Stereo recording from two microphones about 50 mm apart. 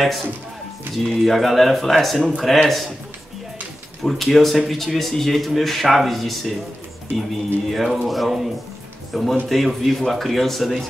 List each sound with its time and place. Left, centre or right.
0.0 s a man's voice: centre
4.0 s a man's voice: centre
7.7 s a man's voice: centre